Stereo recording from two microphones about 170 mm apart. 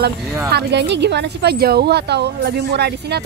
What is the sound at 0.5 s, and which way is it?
Speech, 90° right.